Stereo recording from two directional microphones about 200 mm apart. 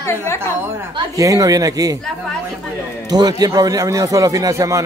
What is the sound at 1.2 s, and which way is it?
Speech, 15° right (ahead or behind).